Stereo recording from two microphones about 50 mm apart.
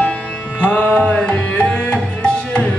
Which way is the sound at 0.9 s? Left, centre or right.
Left.